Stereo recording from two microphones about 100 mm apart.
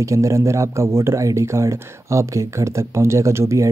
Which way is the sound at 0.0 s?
30° right (ahead or behind).